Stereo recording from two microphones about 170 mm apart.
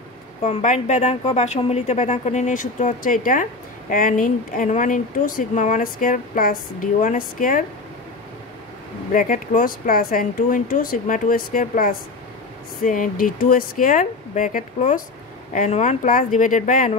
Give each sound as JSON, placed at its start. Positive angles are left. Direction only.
{"t": 0.4, "sound": "speech", "side_deg": 45}
{"t": 9.1, "sound": "speech", "side_deg": 55}